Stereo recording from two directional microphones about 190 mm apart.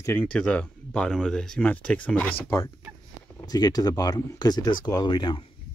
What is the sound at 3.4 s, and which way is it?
Speech, 20° left (ahead or behind).